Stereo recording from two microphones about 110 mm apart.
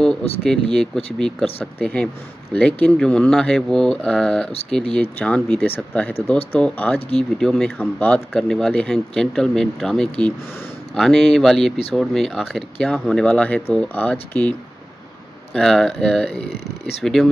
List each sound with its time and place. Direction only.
0.4 s speech: 5° left (ahead or behind)
15.5 s speech: 5° left (ahead or behind)